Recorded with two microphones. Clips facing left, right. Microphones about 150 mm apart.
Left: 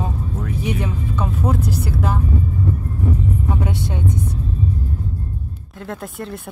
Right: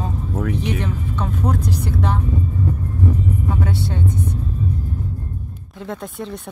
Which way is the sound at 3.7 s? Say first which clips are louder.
Right 1 dB; 15° left (ahead or behind).